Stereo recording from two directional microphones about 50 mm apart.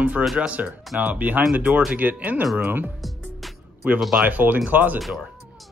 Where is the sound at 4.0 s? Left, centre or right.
Centre.